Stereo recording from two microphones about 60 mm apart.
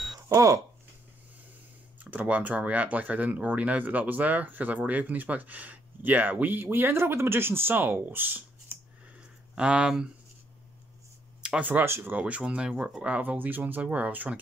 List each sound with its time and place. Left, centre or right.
0.3 s speech: right
2.0 s speech: right
9.6 s speech: centre
11.4 s a sound: centre
12.0 s speech: right